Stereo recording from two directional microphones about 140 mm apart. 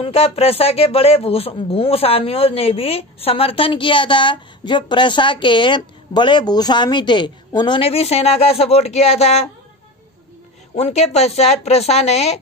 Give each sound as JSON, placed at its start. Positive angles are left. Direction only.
{"t": 0.0, "sound": "speech", "side_deg": 45}
{"t": 10.8, "sound": "speech", "side_deg": 50}